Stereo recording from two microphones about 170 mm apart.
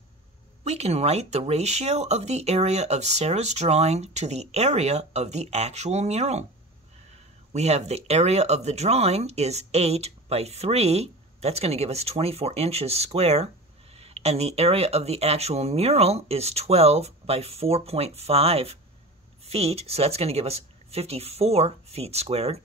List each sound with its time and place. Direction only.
0.7 s speech: 40° right (ahead or behind)
7.5 s speech: 40° right (ahead or behind)